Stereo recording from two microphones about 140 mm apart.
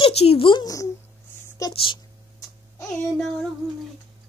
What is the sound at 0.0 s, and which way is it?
Speech, 40° left (ahead or behind).